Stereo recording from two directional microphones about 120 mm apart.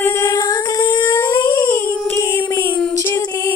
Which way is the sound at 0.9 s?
40° left (ahead or behind).